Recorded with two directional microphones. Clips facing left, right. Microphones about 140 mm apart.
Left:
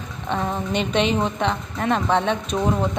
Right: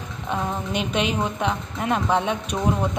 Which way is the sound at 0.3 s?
5° right (ahead or behind).